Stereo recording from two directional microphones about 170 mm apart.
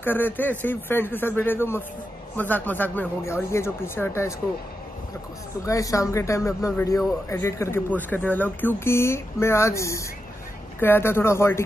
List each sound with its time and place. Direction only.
0.0 s speech: 10° left (ahead or behind)
5.7 s speech: 20° left (ahead or behind)